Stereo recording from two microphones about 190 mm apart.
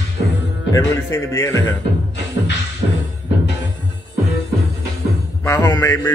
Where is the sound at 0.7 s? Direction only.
15° left (ahead or behind).